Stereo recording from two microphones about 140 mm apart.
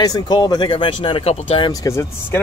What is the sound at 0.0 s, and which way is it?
Speech, 30° left (ahead or behind).